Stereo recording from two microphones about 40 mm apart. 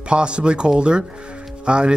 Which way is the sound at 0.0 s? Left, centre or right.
Right.